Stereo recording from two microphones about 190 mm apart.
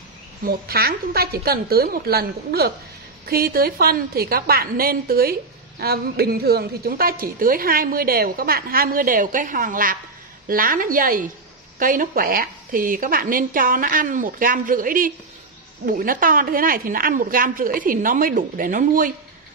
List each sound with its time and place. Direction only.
0.5 s a woman's voice: 55° right (ahead or behind)